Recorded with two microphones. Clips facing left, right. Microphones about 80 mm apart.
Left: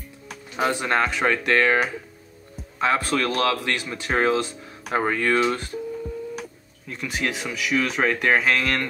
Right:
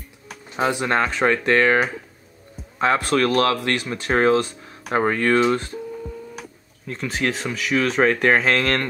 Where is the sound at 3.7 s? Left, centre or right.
Right.